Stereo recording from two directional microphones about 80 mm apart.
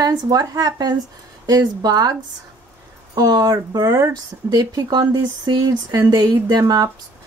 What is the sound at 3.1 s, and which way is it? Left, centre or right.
Speech, right.